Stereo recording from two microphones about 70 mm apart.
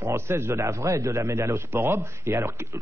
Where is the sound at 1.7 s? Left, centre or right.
Right.